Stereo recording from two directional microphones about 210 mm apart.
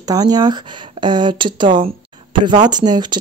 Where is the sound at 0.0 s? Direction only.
20° right (ahead or behind).